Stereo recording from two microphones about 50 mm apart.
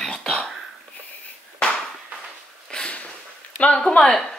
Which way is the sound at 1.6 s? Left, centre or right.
Centre.